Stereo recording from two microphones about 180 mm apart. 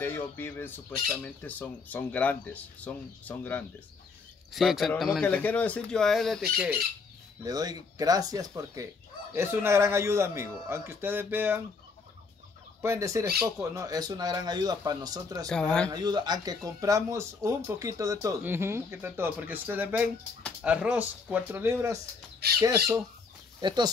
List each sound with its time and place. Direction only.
0.0 s speech: 10° left (ahead or behind)
7.4 s speech: 20° right (ahead or behind)
12.8 s speech: 15° right (ahead or behind)
15.4 s speech: 5° left (ahead or behind)
15.9 s speech: 25° right (ahead or behind)
23.6 s speech: 25° right (ahead or behind)